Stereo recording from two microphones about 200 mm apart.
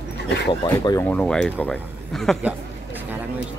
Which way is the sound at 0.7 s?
20° left (ahead or behind).